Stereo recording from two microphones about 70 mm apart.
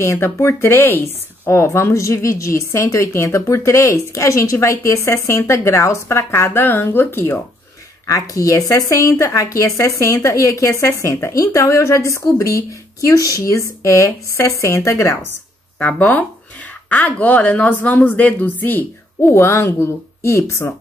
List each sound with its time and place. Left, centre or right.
0.0 s speech: left
8.1 s speech: left
15.8 s speech: centre
19.3 s a woman's voice: left